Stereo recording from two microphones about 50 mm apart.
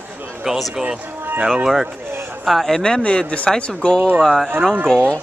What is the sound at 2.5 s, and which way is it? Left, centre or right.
Speech, centre.